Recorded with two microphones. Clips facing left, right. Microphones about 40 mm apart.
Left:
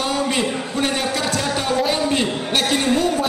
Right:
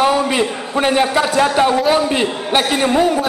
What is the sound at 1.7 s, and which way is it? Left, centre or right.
Speech, centre.